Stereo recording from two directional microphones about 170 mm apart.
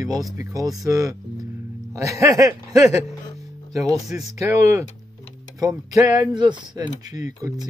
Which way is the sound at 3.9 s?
Centre (ahead or behind).